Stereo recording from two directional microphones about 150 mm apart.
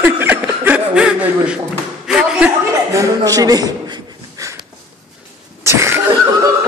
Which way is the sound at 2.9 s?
25° right (ahead or behind).